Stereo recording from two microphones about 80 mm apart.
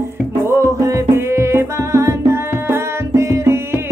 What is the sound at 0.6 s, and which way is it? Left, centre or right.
Music, right.